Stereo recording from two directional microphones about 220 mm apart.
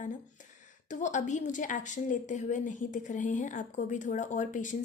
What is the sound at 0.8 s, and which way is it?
A woman's voice, 35° left (ahead or behind).